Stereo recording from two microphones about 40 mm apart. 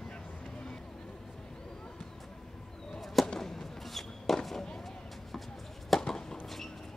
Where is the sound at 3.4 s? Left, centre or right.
Centre.